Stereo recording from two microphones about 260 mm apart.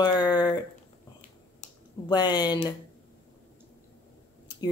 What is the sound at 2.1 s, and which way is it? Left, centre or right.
Speech, centre.